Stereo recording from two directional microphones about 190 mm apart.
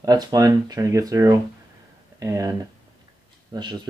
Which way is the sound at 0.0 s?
20° right (ahead or behind).